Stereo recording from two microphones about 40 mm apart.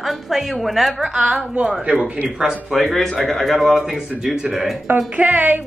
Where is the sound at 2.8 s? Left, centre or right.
Centre.